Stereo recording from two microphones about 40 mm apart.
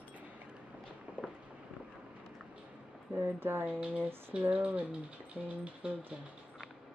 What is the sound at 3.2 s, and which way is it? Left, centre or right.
Speech, right.